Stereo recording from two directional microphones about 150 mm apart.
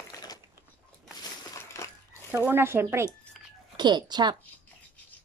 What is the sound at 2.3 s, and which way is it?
Speech, 15° right (ahead or behind).